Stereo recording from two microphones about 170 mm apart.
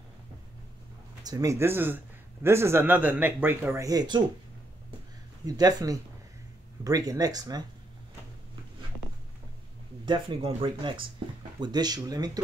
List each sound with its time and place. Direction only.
1.2 s a man's voice: 20° right (ahead or behind)
5.4 s speech: 20° right (ahead or behind)
10.0 s speech: 30° right (ahead or behind)